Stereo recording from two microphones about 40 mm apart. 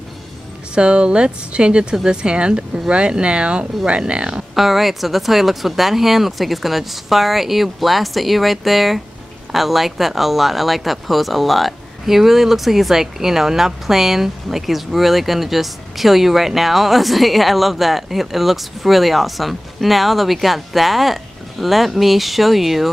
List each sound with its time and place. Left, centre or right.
0.7 s speech: right
4.6 s speech: centre